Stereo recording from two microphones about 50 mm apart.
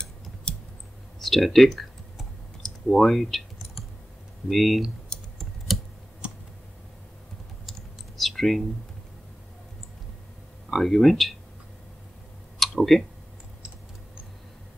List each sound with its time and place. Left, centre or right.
0.5 s typing: centre
1.2 s computer keyboard: centre
4.5 s speech: centre
5.1 s computer keyboard: centre
8.2 s a sound: centre
10.7 s speech: centre
12.5 s clicking: centre